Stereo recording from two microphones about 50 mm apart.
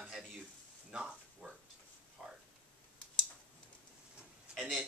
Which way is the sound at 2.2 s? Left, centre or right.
Centre.